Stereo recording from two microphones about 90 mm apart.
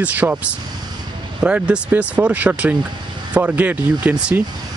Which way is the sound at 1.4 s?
10° right (ahead or behind).